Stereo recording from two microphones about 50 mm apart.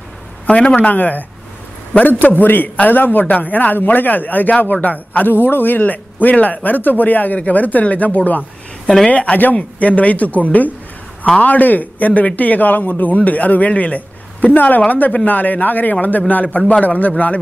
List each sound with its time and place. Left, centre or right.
0.5 s speech: left
0.7 s a man's voice: left
8.8 s speech: centre
9.1 s a man's voice: left